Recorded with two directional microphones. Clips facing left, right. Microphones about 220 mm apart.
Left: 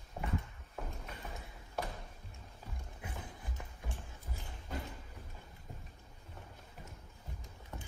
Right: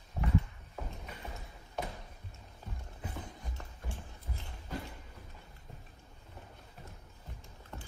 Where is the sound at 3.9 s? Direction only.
20° left (ahead or behind).